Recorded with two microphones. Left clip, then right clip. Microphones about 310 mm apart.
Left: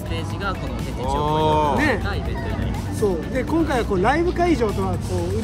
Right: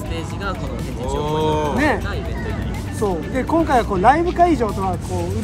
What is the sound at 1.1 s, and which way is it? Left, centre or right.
Speech, centre.